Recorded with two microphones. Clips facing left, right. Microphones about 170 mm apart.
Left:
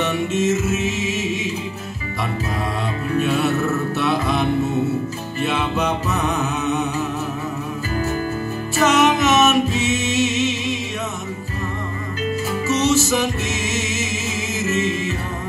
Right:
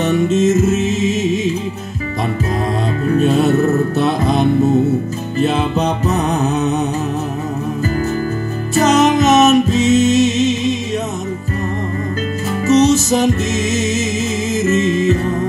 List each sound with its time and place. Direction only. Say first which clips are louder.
0.0 s music: right 6 dB; 40° right (ahead or behind)
3.1 s music: right 6 dB; 40° right (ahead or behind)
8.7 s music: right 4 dB; 40° right (ahead or behind)
12.6 s music: right 7 dB; 40° right (ahead or behind)